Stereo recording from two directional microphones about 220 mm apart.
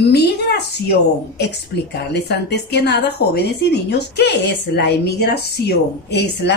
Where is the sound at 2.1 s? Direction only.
50° left (ahead or behind).